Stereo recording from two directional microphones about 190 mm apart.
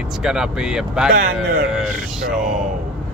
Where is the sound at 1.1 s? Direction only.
45° right (ahead or behind).